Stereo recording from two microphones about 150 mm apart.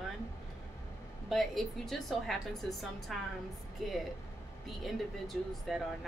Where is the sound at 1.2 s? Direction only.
Centre (ahead or behind).